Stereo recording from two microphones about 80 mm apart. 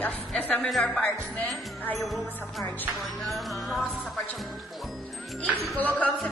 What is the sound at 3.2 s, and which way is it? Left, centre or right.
Music, centre.